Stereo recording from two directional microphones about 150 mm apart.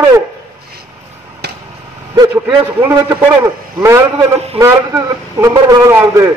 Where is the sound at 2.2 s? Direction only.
20° right (ahead or behind).